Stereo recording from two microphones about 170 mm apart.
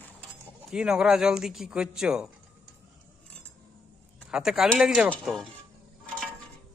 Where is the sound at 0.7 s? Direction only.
5° right (ahead or behind).